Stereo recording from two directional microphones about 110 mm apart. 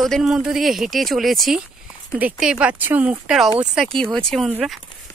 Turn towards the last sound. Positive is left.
turn(degrees=5)  # may be behind; listen again after turning